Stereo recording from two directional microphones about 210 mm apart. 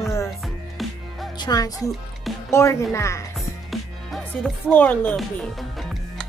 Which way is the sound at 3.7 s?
Centre (ahead or behind).